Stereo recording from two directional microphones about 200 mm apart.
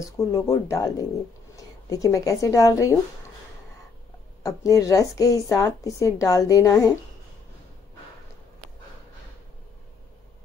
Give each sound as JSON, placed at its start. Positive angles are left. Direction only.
{"t": 0.0, "sound": "a woman's voice", "side_deg": 15}
{"t": 4.4, "sound": "a woman's voice", "side_deg": 15}